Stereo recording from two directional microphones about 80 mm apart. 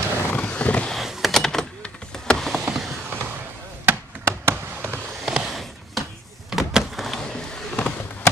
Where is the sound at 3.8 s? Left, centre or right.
Right.